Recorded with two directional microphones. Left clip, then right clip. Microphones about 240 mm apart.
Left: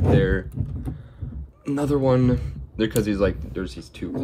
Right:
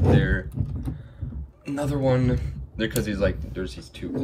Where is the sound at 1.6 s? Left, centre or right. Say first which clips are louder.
Left 3 dB; left.